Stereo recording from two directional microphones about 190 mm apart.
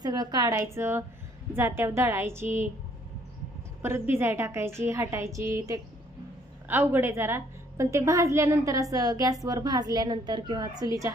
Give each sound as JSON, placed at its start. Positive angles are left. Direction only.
{"t": 0.0, "sound": "a woman's voice", "side_deg": -20}
{"t": 3.8, "sound": "a woman's voice", "side_deg": -10}
{"t": 6.7, "sound": "a woman's voice", "side_deg": -10}